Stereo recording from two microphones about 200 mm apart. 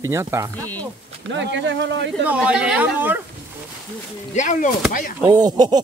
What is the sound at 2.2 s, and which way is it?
Speech, 5° right (ahead or behind).